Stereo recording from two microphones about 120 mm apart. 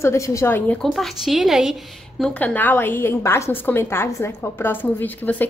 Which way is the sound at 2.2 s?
10° left (ahead or behind).